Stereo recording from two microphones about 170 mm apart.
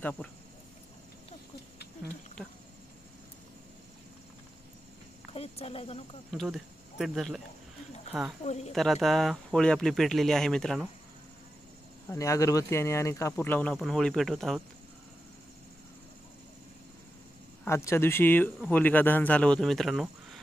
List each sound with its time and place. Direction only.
0.0 s speech: 5° left (ahead or behind)
2.4 s speech: 5° left (ahead or behind)
5.3 s speech: 35° left (ahead or behind)
6.3 s speech: centre (ahead or behind)
12.1 s speech: 20° left (ahead or behind); by 14.6 s centre (ahead or behind)
17.6 s speech: 15° left (ahead or behind)